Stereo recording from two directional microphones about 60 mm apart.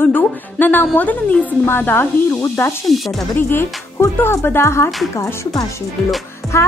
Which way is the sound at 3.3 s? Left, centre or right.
Left.